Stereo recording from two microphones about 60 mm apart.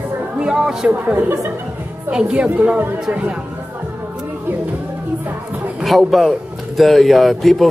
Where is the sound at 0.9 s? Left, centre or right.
Right.